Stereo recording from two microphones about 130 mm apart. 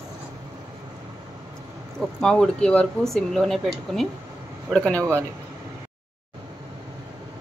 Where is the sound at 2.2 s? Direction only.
5° left (ahead or behind).